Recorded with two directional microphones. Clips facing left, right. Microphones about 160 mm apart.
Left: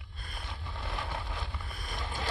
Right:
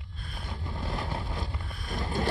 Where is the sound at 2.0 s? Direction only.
45° right (ahead or behind).